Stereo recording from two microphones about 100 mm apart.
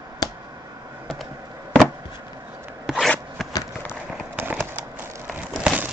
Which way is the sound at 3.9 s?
20° right (ahead or behind).